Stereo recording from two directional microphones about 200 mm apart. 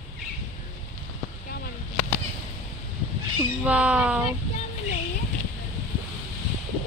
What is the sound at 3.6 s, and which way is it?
Speech, 5° right (ahead or behind).